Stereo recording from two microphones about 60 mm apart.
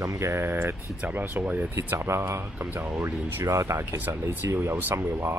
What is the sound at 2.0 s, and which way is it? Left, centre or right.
Speech, right.